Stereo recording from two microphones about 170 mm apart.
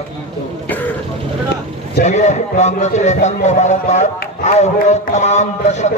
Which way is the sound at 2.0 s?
40° left (ahead or behind).